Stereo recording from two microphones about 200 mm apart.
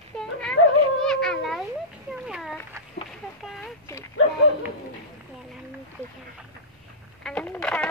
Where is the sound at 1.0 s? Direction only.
5° left (ahead or behind).